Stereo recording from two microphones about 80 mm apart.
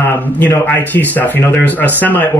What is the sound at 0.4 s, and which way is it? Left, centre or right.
Speech, left.